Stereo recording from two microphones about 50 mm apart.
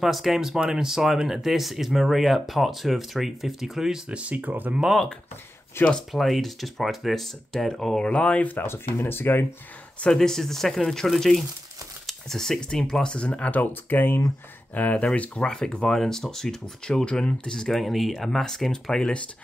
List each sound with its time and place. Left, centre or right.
0.0 s speech: centre
4.1 s speech: right
5.8 s speech: left
6.1 s speech: centre
8.0 s speech: left
8.6 s speech: left
10.1 s speech: centre
13.5 s speech: left
14.7 s speech: left
15.5 s speech: centre